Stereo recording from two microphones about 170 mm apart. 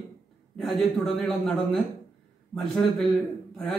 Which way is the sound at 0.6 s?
Centre (ahead or behind).